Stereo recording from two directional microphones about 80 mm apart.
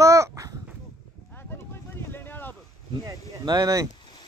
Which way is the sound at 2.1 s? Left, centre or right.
Left.